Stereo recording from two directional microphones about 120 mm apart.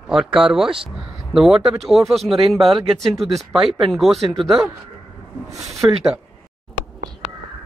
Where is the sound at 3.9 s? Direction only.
Centre (ahead or behind).